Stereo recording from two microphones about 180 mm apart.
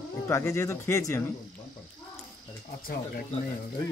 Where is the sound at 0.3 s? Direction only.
15° left (ahead or behind).